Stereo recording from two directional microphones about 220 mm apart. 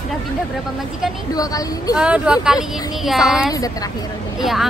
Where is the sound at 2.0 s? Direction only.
5° right (ahead or behind).